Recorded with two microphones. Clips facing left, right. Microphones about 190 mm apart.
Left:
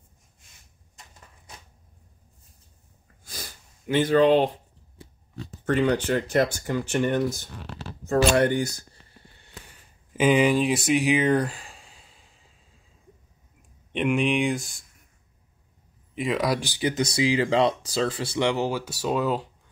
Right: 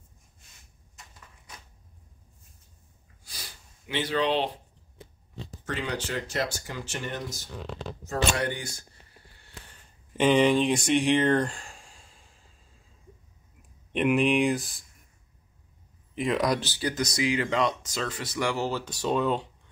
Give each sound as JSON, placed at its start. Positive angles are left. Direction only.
{"t": 3.3, "sound": "sniff", "side_deg": 45}
{"t": 5.7, "sound": "speech", "side_deg": 55}
{"t": 9.7, "sound": "a sound", "side_deg": 5}
{"t": 13.9, "sound": "speech", "side_deg": 0}
{"t": 16.2, "sound": "speech", "side_deg": 5}
{"t": 16.9, "sound": "speech", "side_deg": 30}